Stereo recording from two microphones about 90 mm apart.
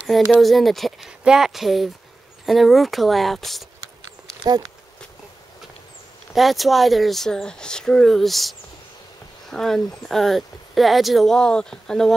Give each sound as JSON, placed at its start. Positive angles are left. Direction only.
{"t": 0.3, "sound": "speech", "side_deg": 0}
{"t": 6.3, "sound": "speech", "side_deg": 0}